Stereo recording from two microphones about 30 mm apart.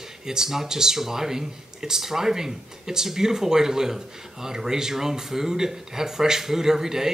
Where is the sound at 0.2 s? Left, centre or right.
Centre.